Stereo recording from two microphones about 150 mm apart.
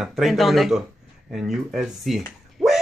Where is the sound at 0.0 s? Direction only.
Centre (ahead or behind).